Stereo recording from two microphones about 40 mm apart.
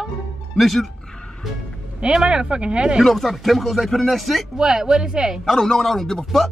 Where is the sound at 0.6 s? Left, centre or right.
Centre.